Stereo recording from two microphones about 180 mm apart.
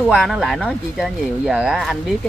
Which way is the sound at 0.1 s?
Centre (ahead or behind).